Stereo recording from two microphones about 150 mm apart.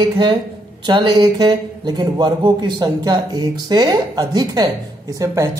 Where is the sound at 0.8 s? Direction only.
30° right (ahead or behind).